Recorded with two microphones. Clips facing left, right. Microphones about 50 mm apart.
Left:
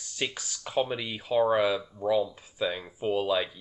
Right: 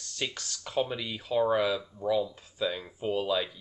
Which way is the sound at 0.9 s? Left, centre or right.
Centre.